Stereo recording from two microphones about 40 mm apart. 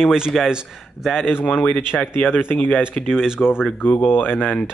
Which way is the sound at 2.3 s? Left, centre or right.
Left.